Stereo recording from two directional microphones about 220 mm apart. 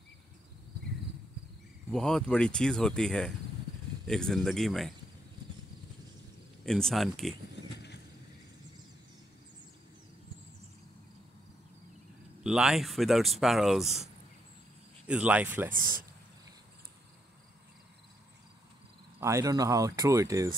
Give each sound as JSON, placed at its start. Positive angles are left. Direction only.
{"t": 1.9, "sound": "speech", "side_deg": 0}
{"t": 6.6, "sound": "speech", "side_deg": 0}
{"t": 12.4, "sound": "speech", "side_deg": -5}
{"t": 15.0, "sound": "speech", "side_deg": -5}
{"t": 15.7, "sound": "speech", "side_deg": -40}
{"t": 19.1, "sound": "speech", "side_deg": -15}